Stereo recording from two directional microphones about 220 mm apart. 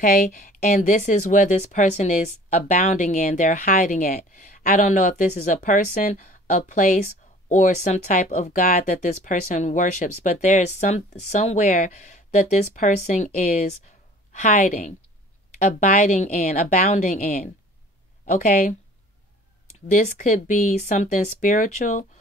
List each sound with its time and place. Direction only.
0.5 s speech: 35° left (ahead or behind)
19.9 s speech: 35° left (ahead or behind)